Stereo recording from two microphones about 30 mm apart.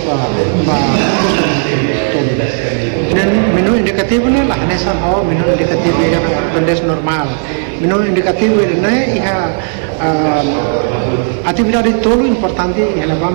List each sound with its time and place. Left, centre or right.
0.4 s speech: left
3.1 s a sound: left
5.0 s speech: centre
5.6 s a man's voice: left
10.0 s a man's voice: left
11.4 s a man's voice: left